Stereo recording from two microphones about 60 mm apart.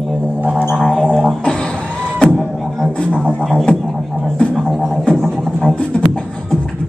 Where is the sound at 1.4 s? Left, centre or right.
Centre.